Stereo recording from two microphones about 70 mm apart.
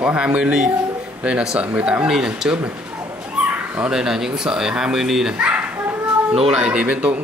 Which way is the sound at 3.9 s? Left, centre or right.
Centre.